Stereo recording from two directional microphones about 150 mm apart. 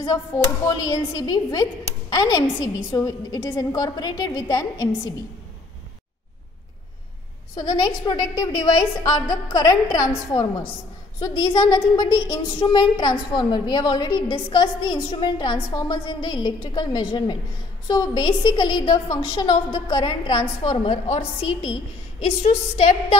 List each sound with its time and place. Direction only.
0.7 s a woman's voice: 25° left (ahead or behind)
7.5 s a woman's voice: 25° left (ahead or behind)